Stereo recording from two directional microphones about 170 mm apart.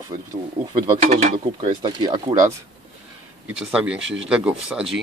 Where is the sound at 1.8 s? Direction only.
25° right (ahead or behind).